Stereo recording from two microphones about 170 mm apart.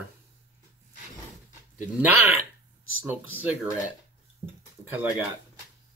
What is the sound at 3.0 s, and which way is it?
Speech, 10° right (ahead or behind).